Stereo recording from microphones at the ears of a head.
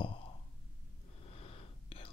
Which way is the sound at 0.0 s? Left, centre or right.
Left.